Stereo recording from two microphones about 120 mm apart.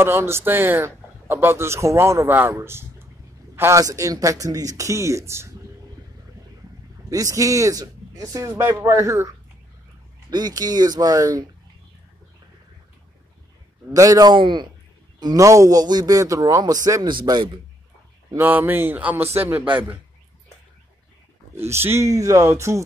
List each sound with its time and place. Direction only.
0.0 s a man's voice: 20° right (ahead or behind)
7.1 s a man's voice: 30° right (ahead or behind)
10.3 s speech: 35° right (ahead or behind)
13.9 s a man's voice: 30° right (ahead or behind)
14.3 s a man's voice: 40° right (ahead or behind)
18.3 s speech: 15° right (ahead or behind)
21.6 s a man's voice: 20° right (ahead or behind)